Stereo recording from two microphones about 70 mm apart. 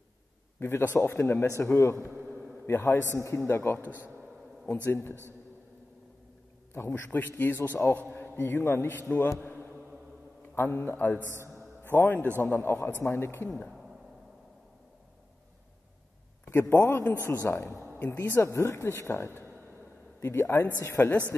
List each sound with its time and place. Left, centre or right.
0.6 s a man's voice: left
6.7 s a man's voice: left
8.4 s speech: left
9.4 s mantra: left
10.5 s speech: left
11.4 s music: right
11.9 s speech: left
16.4 s a man's voice: left
17.0 s a man's voice: left
17.9 s speech: left
18.3 s speech: left